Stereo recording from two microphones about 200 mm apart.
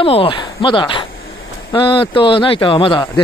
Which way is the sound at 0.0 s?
25° left (ahead or behind).